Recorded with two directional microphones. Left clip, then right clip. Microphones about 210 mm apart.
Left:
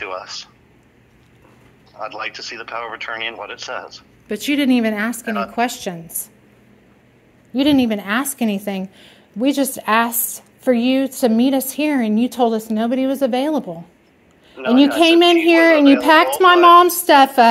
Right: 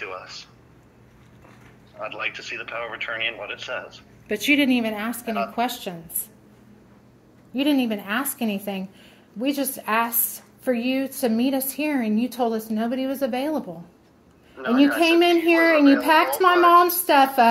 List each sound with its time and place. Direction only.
0.0 s a sound: 60° left (ahead or behind)
2.0 s a man's voice: 50° left (ahead or behind)
7.5 s a woman's voice: 40° left (ahead or behind)